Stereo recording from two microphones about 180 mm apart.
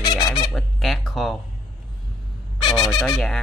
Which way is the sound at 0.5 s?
Centre (ahead or behind).